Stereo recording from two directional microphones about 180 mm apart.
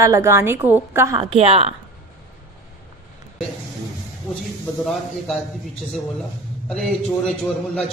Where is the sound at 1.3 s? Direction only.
35° right (ahead or behind).